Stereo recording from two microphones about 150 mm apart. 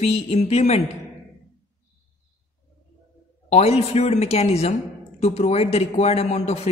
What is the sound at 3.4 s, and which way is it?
A man's voice, 45° left (ahead or behind).